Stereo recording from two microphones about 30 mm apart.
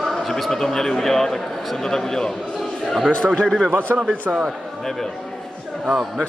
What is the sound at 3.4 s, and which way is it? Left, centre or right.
Speech, centre.